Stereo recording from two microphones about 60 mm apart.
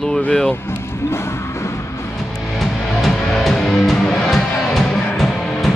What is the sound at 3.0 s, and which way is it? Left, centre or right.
Music, centre.